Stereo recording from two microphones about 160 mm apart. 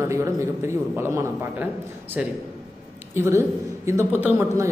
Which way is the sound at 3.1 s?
15° right (ahead or behind).